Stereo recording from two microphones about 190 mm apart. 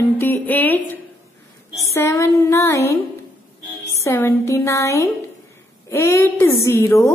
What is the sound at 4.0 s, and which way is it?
A woman's voice, 15° left (ahead or behind).